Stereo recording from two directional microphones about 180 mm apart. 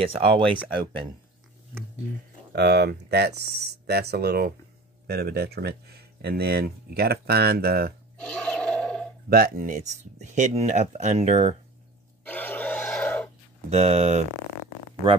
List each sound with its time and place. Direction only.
0.0 s speech: 30° right (ahead or behind)
2.5 s speech: 65° right (ahead or behind)
8.2 s roar: 5° left (ahead or behind)
9.3 s speech: 55° right (ahead or behind)
12.3 s grunt: 10° left (ahead or behind)
13.7 s speech: 35° right (ahead or behind)